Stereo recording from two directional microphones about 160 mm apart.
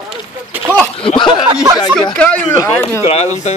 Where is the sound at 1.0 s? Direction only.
30° left (ahead or behind).